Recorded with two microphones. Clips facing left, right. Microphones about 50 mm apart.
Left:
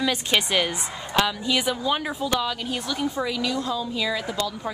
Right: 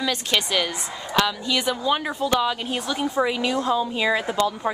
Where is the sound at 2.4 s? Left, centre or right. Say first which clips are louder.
Right 3 dB; centre.